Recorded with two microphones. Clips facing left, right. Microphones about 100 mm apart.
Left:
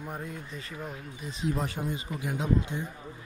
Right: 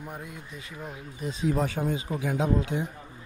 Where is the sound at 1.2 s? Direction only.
55° right (ahead or behind).